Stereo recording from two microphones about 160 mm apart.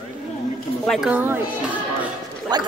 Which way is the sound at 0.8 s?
5° right (ahead or behind).